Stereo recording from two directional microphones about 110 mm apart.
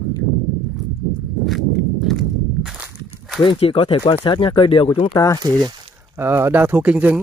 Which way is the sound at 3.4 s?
55° left (ahead or behind).